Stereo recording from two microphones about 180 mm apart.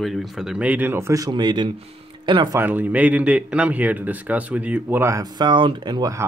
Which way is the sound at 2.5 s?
10° right (ahead or behind).